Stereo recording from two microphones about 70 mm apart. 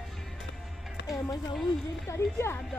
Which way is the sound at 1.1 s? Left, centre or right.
Left.